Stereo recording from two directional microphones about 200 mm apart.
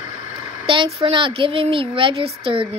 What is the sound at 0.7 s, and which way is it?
Speech, 25° right (ahead or behind).